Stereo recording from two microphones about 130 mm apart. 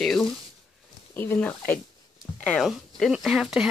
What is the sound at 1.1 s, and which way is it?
Speech, 15° left (ahead or behind).